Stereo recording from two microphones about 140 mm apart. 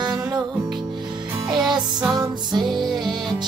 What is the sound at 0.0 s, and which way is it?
Music, 30° right (ahead or behind).